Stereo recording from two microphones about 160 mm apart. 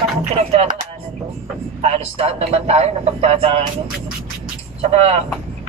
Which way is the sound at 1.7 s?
40° right (ahead or behind).